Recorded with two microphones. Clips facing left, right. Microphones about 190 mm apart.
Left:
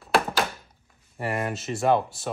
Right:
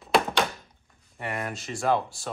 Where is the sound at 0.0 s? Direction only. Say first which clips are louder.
Even; centre (ahead or behind).